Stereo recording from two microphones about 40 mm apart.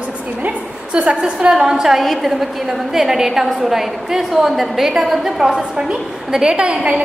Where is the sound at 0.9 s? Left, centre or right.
Right.